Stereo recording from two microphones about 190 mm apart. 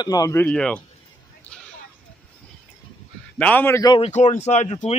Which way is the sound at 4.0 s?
35° left (ahead or behind).